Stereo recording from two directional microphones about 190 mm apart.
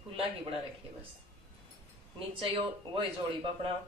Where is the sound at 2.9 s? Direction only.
25° right (ahead or behind).